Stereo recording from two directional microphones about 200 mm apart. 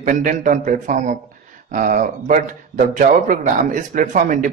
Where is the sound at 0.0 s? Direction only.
40° right (ahead or behind).